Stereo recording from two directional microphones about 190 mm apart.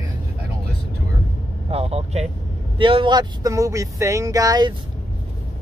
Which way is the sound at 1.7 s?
30° right (ahead or behind).